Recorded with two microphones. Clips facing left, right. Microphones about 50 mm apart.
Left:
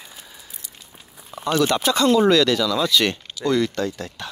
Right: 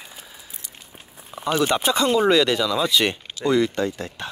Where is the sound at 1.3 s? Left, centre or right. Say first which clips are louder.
Left 1 dB; centre.